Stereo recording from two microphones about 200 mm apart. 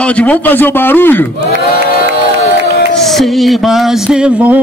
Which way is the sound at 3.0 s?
Centre (ahead or behind).